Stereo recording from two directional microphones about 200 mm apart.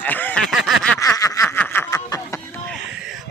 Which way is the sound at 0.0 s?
10° left (ahead or behind).